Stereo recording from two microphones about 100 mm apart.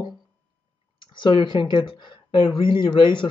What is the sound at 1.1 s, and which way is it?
Speech, 50° left (ahead or behind).